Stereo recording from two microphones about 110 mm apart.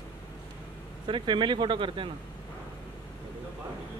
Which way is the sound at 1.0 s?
50° right (ahead or behind).